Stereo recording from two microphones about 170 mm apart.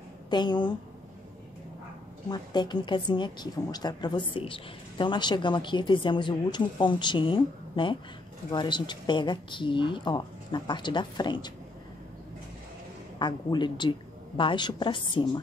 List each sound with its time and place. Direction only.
0.3 s a woman's voice: 25° left (ahead or behind)
2.2 s a woman's voice: 25° left (ahead or behind)
13.2 s a woman's voice: 25° left (ahead or behind)